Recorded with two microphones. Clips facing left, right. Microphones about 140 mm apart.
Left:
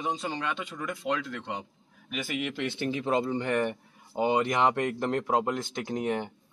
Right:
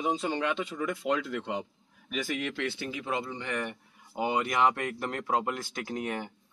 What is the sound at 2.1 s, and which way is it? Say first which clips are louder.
Speech: even; 5° left (ahead or behind).